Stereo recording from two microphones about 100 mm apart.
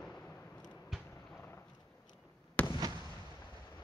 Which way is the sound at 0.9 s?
Centre (ahead or behind).